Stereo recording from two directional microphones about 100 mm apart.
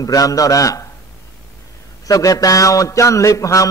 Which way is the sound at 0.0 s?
35° left (ahead or behind).